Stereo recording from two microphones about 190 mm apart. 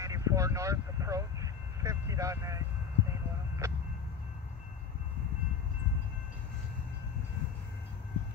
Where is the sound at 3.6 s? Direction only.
15° right (ahead or behind).